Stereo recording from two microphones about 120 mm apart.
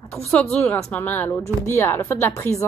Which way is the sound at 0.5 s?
10° left (ahead or behind).